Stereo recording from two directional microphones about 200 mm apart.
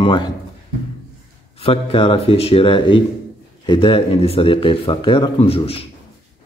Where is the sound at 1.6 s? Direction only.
25° left (ahead or behind).